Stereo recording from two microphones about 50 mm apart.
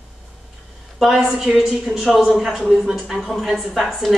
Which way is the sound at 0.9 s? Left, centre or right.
Centre.